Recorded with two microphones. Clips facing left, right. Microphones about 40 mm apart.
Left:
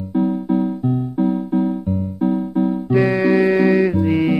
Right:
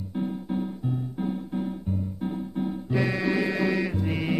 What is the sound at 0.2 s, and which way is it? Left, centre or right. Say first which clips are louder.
Music: left 11 dB; left.